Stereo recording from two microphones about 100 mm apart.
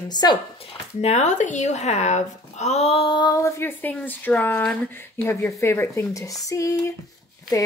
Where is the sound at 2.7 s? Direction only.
90° left.